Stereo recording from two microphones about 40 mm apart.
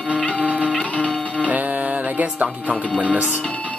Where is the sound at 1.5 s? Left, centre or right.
Right.